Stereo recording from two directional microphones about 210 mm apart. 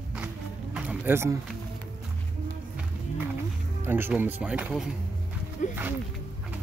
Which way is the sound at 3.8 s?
10° right (ahead or behind).